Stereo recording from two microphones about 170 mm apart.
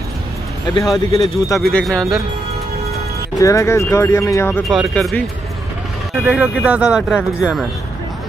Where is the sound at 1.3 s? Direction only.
20° left (ahead or behind).